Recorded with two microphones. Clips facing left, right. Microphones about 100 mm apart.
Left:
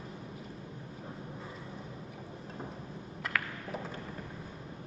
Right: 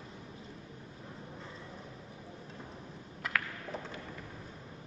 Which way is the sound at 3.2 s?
5° left (ahead or behind).